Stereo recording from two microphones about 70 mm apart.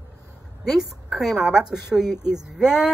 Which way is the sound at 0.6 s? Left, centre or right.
Centre.